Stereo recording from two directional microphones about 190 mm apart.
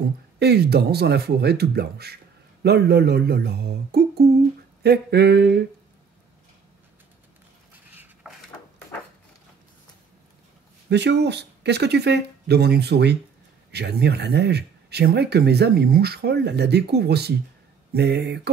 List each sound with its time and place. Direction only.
0.4 s speech: 60° right (ahead or behind)
7.9 s a sound: 5° right (ahead or behind)
10.9 s speech: 65° right (ahead or behind)